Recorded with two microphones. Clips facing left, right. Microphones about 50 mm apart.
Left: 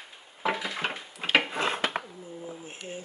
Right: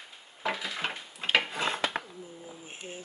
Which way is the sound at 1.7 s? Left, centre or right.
Left.